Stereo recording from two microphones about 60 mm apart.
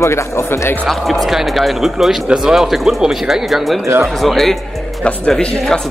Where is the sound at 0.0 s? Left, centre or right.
Left.